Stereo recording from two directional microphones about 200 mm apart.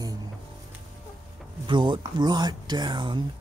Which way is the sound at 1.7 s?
25° right (ahead or behind).